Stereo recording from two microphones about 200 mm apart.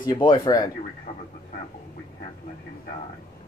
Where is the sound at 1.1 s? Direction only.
35° left (ahead or behind).